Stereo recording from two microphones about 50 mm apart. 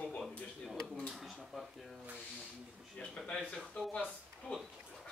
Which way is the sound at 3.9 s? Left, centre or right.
Left.